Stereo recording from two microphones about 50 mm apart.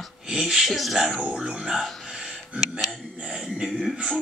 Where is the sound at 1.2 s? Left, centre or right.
Centre.